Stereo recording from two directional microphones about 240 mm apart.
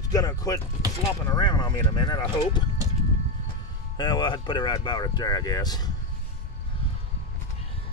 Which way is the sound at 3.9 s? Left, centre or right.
Centre.